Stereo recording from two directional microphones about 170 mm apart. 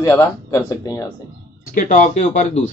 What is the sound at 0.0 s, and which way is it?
Speech, 15° left (ahead or behind).